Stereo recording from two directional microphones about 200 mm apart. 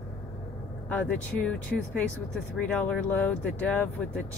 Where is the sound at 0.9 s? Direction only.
5° left (ahead or behind).